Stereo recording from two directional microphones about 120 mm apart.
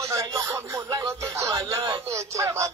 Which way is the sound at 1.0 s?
25° right (ahead or behind).